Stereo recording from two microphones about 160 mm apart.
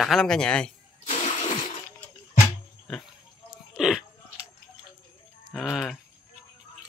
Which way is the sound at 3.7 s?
5° right (ahead or behind).